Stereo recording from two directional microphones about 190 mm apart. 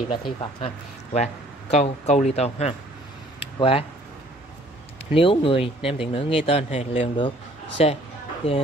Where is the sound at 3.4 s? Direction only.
30° left (ahead or behind).